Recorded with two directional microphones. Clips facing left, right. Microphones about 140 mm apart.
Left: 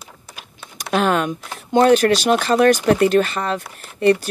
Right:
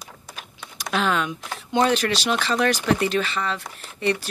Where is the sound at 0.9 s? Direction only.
50° left (ahead or behind).